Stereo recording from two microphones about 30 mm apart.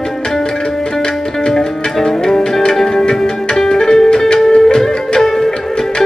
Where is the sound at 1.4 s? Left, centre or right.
Centre.